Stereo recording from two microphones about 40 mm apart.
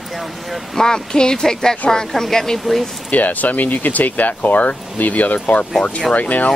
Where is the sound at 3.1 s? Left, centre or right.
Left.